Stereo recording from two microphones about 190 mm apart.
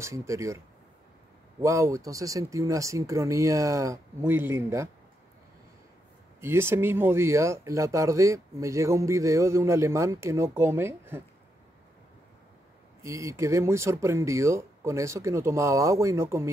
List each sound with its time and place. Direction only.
0.0 s speech: 15° right (ahead or behind)
1.6 s speech: 15° right (ahead or behind)
6.4 s speech: 15° right (ahead or behind)
13.0 s speech: 15° right (ahead or behind)